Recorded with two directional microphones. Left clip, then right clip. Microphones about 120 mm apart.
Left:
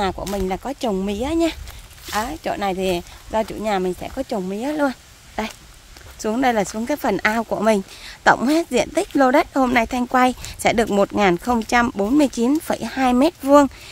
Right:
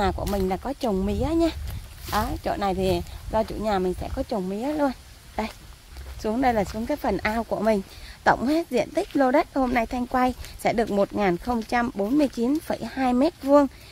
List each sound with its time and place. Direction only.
0.4 s speech: 5° left (ahead or behind); by 13.7 s 30° left (ahead or behind)